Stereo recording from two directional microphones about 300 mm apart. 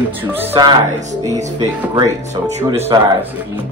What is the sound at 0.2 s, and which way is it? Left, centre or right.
Speech, centre.